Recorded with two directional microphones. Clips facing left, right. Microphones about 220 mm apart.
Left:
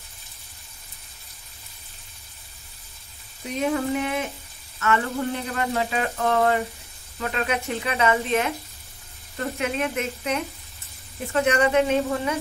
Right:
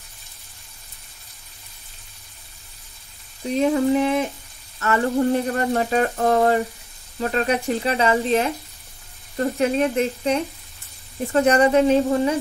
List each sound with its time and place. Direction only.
3.4 s speech: 35° right (ahead or behind)
4.7 s frying: 35° right (ahead or behind)
5.5 s speech: 40° right (ahead or behind)